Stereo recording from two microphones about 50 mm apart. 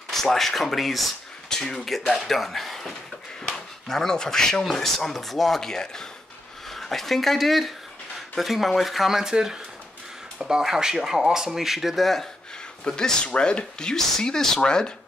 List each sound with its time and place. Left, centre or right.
0.1 s speech: centre
12.8 s speech: centre